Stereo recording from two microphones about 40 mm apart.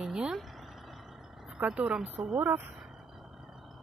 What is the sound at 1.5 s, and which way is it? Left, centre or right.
Speech, right.